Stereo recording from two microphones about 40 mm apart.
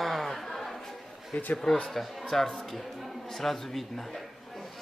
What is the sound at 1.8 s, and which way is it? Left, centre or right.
A man's voice, centre.